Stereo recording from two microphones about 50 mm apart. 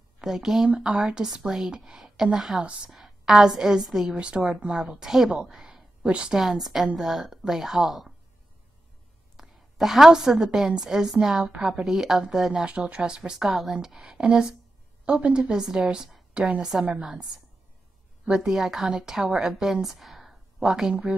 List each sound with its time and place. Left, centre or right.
0.2 s speech: centre
2.6 s a woman's voice: right
2.9 s a woman's voice: centre
4.2 s a woman's voice: centre
6.3 s speech: centre
9.4 s a woman's voice: centre
12.6 s a woman's voice: right
18.2 s a woman's voice: centre